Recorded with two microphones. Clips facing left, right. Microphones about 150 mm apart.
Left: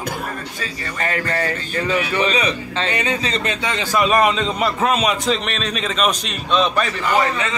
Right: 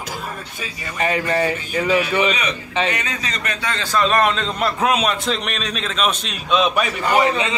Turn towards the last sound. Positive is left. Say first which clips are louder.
# right 2 dB
turn(degrees=-15)  # may be behind; listen again after turning